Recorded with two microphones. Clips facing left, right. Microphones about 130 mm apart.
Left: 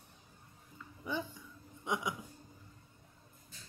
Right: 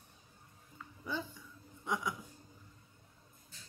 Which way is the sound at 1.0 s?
15° left (ahead or behind).